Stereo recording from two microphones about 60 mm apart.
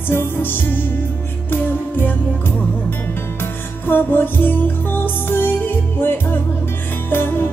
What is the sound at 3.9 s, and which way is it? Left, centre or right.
Music, left.